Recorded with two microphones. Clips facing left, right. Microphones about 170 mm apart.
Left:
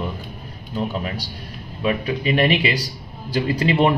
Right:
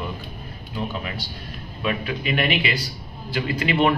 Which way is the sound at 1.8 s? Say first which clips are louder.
Left 4 dB; 35° left (ahead or behind).